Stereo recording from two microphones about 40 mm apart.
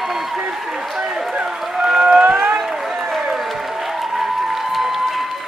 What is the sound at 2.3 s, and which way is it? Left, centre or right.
Run, right.